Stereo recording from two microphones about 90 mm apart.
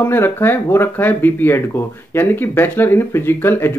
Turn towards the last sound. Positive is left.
turn(degrees=25)  # may be behind; listen again after turning